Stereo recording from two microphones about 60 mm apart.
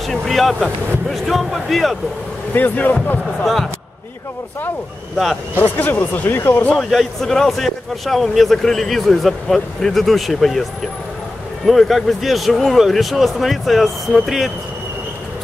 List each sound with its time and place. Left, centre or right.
0.0 s speech: centre
2.5 s speech: left
5.1 s speech: centre
5.6 s speech: left
6.8 s speech: centre
11.6 s speech: centre